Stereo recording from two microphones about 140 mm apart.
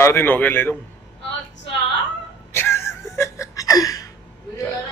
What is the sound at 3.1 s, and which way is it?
Laughter, 20° left (ahead or behind).